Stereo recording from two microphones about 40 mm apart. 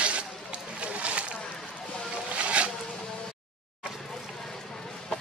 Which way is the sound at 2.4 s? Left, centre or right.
Right.